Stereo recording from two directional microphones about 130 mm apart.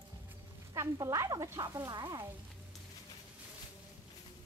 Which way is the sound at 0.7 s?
25° right (ahead or behind).